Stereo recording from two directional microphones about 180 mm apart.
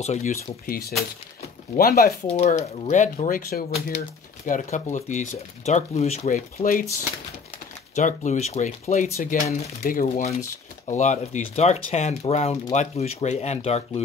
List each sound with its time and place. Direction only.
0.0 s speech: 40° left (ahead or behind)
0.7 s speech: 55° left (ahead or behind)
2.2 s speech: 40° left (ahead or behind)
7.9 s speech: 40° left (ahead or behind)
10.0 s speech: 35° left (ahead or behind)